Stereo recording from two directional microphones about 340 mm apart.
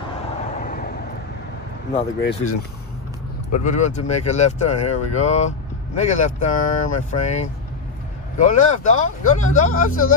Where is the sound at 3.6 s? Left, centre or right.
Left.